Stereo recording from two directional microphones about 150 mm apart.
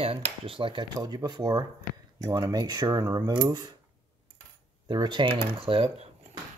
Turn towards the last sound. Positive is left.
turn(degrees=-40)  # may be behind; listen again after turning